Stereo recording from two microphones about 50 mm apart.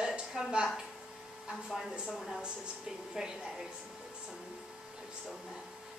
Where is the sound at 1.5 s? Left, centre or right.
Centre.